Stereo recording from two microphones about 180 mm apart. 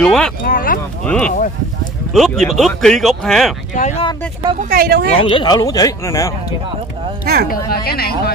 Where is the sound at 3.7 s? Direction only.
40° left (ahead or behind).